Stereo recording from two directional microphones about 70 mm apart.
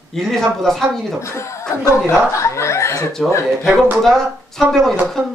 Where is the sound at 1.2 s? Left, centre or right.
Left.